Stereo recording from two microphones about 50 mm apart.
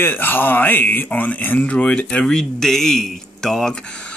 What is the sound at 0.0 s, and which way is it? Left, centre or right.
Speech, left.